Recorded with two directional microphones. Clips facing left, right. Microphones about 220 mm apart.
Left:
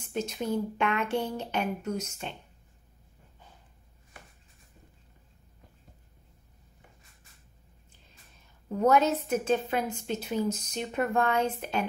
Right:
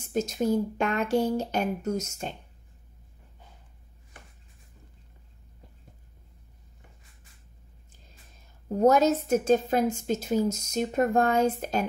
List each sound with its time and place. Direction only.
0.0 s a woman's voice: 40° right (ahead or behind)
8.6 s a woman's voice: 40° right (ahead or behind)